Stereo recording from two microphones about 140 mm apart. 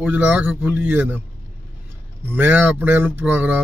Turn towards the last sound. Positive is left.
turn(degrees=-15)  # may be behind; listen again after turning